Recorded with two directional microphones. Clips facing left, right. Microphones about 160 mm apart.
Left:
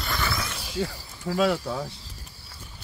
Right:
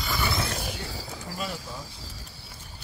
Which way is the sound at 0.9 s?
90° right.